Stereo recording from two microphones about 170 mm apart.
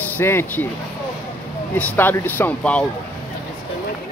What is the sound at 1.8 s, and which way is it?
Speech, 10° left (ahead or behind).